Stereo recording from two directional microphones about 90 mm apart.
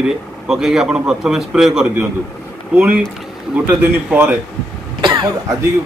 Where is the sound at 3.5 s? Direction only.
15° right (ahead or behind).